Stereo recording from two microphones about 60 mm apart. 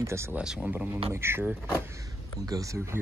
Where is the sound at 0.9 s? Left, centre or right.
Right.